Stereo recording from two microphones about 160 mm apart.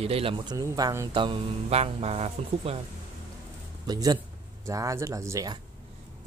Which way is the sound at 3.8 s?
25° right (ahead or behind).